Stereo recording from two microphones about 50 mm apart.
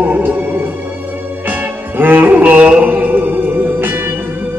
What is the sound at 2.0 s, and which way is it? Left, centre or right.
Music, right.